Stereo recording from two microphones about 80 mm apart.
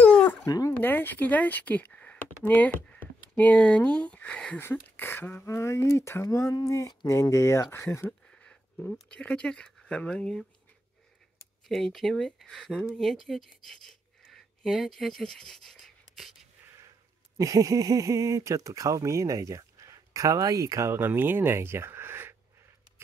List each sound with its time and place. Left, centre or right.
0.0 s dog: centre
0.5 s speech: left
0.7 s speech: left
4.6 s speech: left
6.2 s speech: left
8.3 s speech: centre
11.6 s speech: centre
17.4 s speech: right